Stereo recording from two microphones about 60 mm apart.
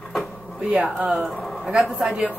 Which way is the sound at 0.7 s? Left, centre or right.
Centre.